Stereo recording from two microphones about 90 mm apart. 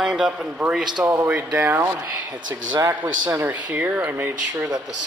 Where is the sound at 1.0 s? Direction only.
25° right (ahead or behind).